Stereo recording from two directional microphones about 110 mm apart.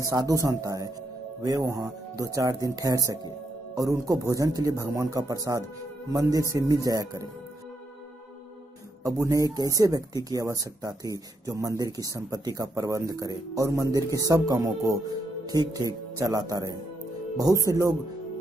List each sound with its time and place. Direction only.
0.0 s speech: 30° right (ahead or behind)
9.0 s speech: 30° right (ahead or behind)